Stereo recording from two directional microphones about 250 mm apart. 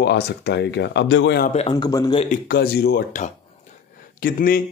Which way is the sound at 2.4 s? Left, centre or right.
Left.